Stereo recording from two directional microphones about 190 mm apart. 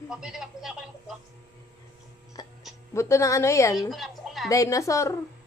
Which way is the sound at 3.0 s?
15° left (ahead or behind).